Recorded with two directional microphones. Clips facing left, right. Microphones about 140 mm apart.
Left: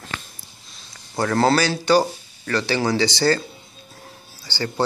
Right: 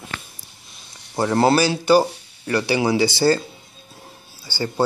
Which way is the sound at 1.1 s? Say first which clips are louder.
Right 1 dB; 20° right (ahead or behind).